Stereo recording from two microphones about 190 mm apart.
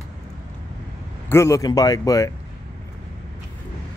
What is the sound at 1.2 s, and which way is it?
Speech, 15° left (ahead or behind).